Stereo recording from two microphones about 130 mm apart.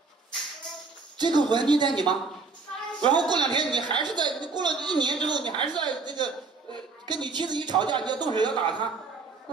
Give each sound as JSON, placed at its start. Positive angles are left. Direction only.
{"t": 1.1, "sound": "a woman's voice", "side_deg": -35}